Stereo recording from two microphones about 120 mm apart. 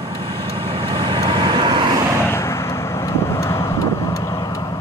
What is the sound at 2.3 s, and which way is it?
Vehicle, 25° left (ahead or behind).